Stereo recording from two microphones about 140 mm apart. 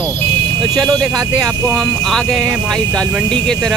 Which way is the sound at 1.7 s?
5° left (ahead or behind).